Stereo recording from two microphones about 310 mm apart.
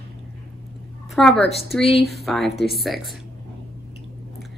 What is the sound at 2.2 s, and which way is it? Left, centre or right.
Speech, centre.